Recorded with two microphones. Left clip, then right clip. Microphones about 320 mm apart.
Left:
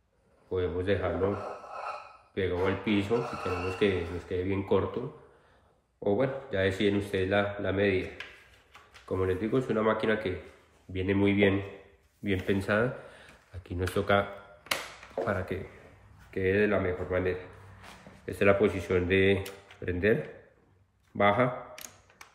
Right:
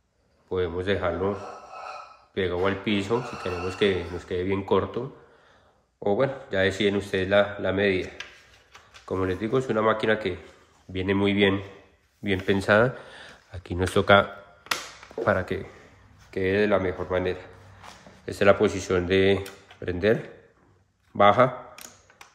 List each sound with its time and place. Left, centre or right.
0.5 s speech: right
2.3 s speech: right
6.0 s speech: right
9.1 s speech: right
15.2 s speech: centre
21.2 s speech: centre